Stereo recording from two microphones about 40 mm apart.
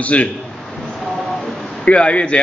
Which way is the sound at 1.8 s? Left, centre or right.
Left.